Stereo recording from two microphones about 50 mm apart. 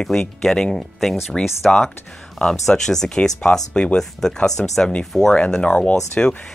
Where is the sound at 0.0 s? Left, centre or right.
Centre.